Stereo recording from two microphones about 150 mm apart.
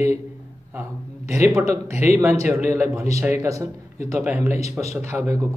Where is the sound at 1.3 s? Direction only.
20° right (ahead or behind).